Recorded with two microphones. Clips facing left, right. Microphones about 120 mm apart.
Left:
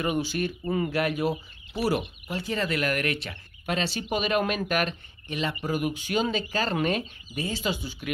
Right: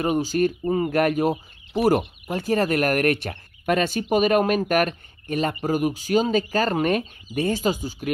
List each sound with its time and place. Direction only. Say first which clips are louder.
0.0 s speech: right 6 dB; 40° right (ahead or behind)